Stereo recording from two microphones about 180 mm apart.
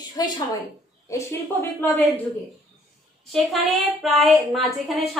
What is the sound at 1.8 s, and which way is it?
Speech, 10° left (ahead or behind).